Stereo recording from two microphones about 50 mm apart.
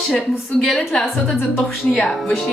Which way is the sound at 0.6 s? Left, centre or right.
Centre.